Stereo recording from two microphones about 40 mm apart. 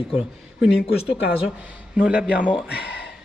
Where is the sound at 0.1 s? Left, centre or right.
Right.